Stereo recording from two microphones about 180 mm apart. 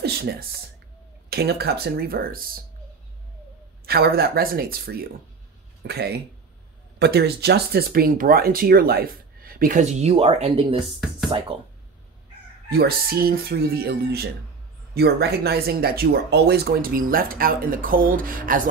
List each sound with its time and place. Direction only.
0.0 s speech: 60° right (ahead or behind)
3.8 s speech: 60° right (ahead or behind); by 10.8 s 30° right (ahead or behind)
10.8 s speech: centre (ahead or behind)
11.2 s speech: 30° right (ahead or behind)
12.6 s speech: 60° right (ahead or behind)